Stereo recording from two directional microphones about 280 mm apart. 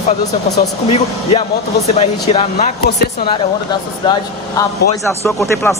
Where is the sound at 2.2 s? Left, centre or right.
Left.